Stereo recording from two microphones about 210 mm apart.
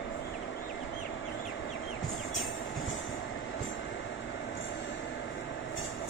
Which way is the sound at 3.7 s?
60° left (ahead or behind).